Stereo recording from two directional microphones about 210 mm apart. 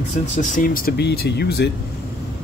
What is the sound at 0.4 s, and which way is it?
Speech, 40° left (ahead or behind).